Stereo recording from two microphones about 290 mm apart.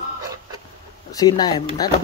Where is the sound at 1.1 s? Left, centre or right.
Centre.